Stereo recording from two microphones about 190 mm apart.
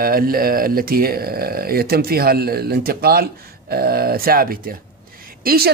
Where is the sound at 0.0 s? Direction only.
50° right (ahead or behind).